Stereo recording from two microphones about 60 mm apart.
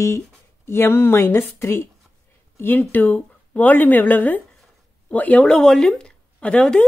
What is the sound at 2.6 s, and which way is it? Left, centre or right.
Speech, left.